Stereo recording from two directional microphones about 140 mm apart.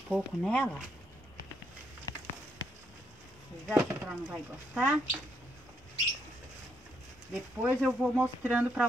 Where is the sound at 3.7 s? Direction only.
15° right (ahead or behind).